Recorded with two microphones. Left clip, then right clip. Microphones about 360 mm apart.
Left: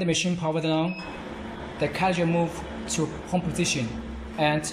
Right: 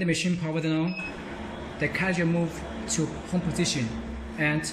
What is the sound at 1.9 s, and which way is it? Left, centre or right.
Speech, centre.